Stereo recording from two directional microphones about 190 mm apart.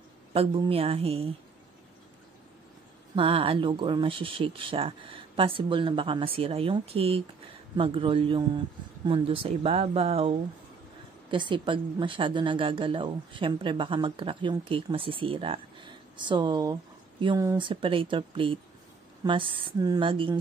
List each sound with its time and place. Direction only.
0.3 s a woman's voice: 30° right (ahead or behind)
3.2 s a woman's voice: 30° right (ahead or behind)